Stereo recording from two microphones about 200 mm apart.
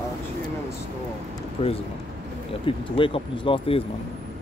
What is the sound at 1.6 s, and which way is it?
Speech, 30° left (ahead or behind).